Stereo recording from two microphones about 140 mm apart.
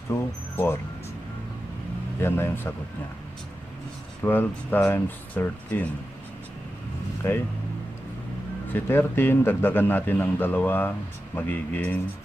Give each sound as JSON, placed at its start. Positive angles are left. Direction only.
{"t": 0.1, "sound": "speech", "side_deg": 20}
{"t": 2.2, "sound": "a man's voice", "side_deg": 15}
{"t": 4.2, "sound": "a man's voice", "side_deg": 15}
{"t": 8.6, "sound": "a man's voice", "side_deg": 15}